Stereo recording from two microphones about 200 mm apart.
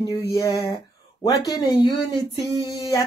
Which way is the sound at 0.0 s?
15° left (ahead or behind).